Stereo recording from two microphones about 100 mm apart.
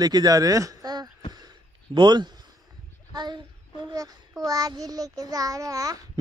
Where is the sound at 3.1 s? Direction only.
45° right (ahead or behind).